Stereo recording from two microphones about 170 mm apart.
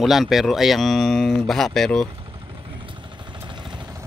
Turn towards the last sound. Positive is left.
turn(degrees=-25)  # may be behind; listen again after turning